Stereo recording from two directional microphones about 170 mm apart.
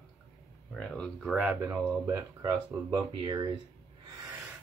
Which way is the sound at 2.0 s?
20° right (ahead or behind).